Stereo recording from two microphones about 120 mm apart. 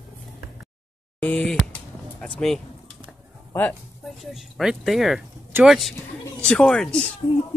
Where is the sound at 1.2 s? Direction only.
10° left (ahead or behind).